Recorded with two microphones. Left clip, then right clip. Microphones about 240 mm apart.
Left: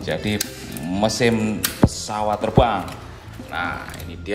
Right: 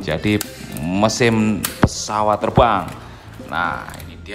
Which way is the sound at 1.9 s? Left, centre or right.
Right.